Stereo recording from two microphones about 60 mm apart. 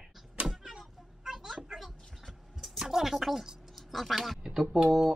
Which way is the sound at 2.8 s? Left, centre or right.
Centre.